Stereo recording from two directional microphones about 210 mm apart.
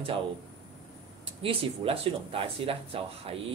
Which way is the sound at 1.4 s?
25° right (ahead or behind).